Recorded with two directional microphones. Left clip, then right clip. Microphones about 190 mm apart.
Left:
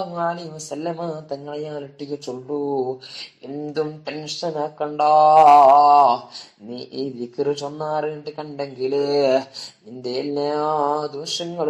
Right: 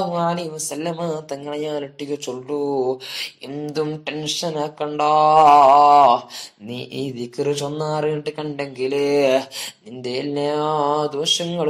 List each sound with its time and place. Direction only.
0.1 s speech: 35° right (ahead or behind)